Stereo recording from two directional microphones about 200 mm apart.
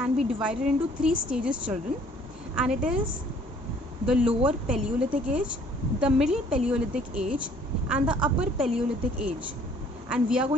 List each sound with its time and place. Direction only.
0.0 s speech: 5° right (ahead or behind)
4.0 s speech: 5° right (ahead or behind)